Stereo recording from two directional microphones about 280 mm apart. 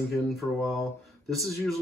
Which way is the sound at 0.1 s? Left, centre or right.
Centre.